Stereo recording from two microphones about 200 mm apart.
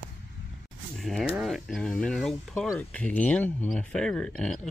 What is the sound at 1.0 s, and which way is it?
Speech, centre (ahead or behind).